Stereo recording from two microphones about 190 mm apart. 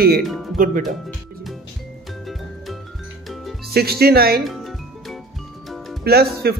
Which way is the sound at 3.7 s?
55° right (ahead or behind).